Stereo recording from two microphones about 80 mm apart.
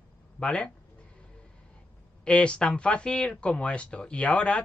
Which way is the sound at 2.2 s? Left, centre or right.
Centre.